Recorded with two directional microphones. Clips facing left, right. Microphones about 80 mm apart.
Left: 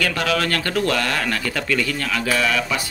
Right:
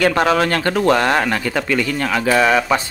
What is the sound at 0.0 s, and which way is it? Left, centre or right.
Speech, right.